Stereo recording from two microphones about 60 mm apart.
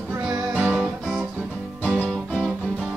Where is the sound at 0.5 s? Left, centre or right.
Centre.